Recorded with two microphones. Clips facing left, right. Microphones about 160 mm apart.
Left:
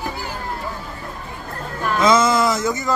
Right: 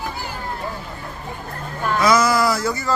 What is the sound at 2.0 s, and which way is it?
Speech, 25° left (ahead or behind).